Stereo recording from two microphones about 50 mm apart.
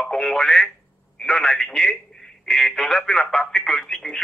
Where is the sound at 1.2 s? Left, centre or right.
Centre.